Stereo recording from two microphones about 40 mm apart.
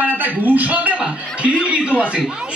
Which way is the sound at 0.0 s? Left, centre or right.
Right.